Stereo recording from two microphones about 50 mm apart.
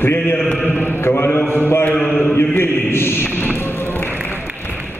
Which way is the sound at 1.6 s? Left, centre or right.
Left.